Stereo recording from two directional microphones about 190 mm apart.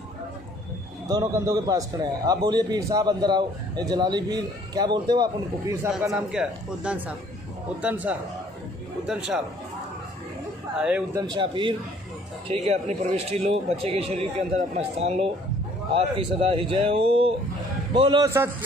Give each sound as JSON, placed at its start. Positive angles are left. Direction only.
{"t": 1.0, "sound": "a man's voice", "side_deg": -20}
{"t": 6.1, "sound": "a man's voice", "side_deg": -5}
{"t": 10.8, "sound": "a man's voice", "side_deg": -5}
{"t": 11.1, "sound": "a man's voice", "side_deg": -20}
{"t": 18.2, "sound": "a man's voice", "side_deg": -15}